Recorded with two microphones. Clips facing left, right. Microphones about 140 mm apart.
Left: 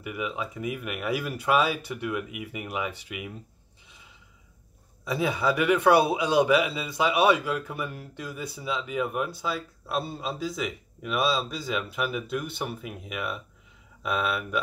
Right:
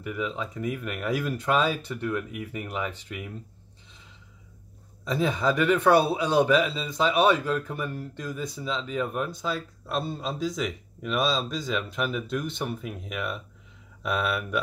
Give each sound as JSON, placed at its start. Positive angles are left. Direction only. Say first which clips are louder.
{"t": 0.0, "sound": "a man's voice", "louder": "right 1 dB", "side_deg": 10}
{"t": 5.0, "sound": "a man's voice", "louder": "right 1 dB", "side_deg": 10}